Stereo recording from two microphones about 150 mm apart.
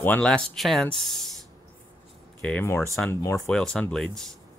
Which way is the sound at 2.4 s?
15° left (ahead or behind).